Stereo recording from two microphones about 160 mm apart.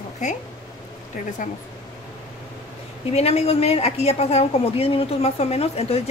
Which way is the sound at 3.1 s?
40° left (ahead or behind).